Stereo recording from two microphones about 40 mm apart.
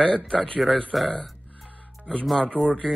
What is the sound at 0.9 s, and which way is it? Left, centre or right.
Speech, centre.